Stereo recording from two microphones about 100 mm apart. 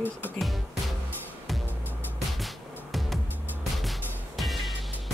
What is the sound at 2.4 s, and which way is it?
Music, centre (ahead or behind).